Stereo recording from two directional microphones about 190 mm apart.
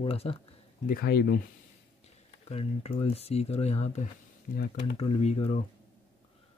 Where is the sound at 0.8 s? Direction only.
55° left (ahead or behind).